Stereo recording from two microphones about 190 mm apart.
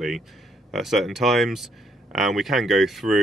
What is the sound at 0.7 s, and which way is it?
Speech, centre (ahead or behind).